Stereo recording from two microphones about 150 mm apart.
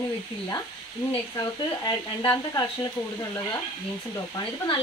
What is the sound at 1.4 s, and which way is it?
Speech, 20° left (ahead or behind).